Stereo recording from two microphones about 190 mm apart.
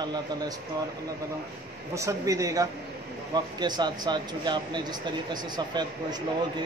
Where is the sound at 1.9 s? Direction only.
15° right (ahead or behind).